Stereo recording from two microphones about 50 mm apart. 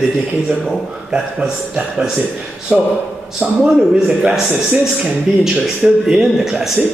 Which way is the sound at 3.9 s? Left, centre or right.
Centre.